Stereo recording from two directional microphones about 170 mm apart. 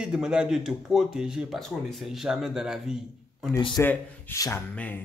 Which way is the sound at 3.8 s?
15° left (ahead or behind).